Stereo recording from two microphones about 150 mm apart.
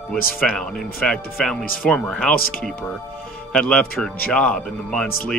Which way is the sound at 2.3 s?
75° left (ahead or behind).